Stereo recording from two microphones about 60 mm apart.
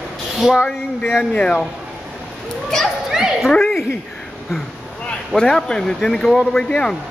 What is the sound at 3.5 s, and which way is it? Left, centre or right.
Speech, centre.